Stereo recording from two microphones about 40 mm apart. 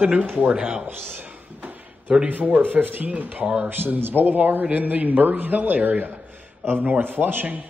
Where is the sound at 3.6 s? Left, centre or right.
Right.